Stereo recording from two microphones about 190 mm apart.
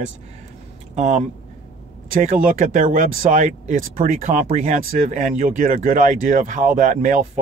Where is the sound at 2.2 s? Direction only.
45° right (ahead or behind).